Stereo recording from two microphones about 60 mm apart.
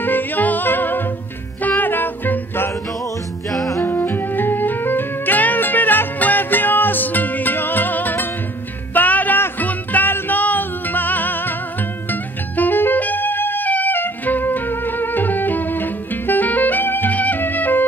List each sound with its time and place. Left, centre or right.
0.0 s music: left
3.8 s music: left
12.1 s saxophone: left